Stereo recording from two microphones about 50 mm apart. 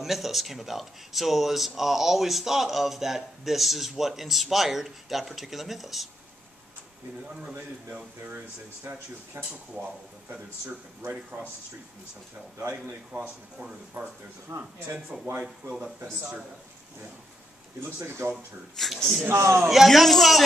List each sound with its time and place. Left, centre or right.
0.0 s speech: centre
8.9 s speech: right
11.3 s speech: right
12.5 s speech: right
13.6 s speech: centre
14.5 s speech: right
15.4 s a man's voice: centre
17.8 s speech: right
18.3 s speech: centre
19.2 s speech: right
19.6 s a man's voice: centre
19.9 s speech: centre